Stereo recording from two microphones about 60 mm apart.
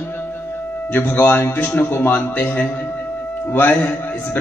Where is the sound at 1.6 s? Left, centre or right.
Left.